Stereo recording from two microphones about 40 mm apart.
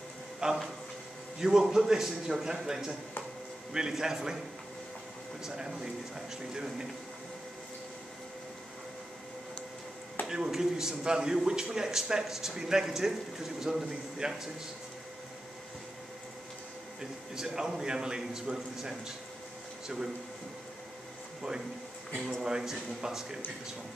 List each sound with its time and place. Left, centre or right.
0.4 s a man's voice: centre
5.4 s a man's voice: centre
10.2 s a man's voice: centre
17.4 s a man's voice: centre
22.4 s a man's voice: centre